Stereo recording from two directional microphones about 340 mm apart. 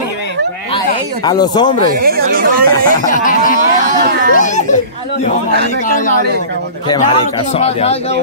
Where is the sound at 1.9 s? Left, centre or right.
Right.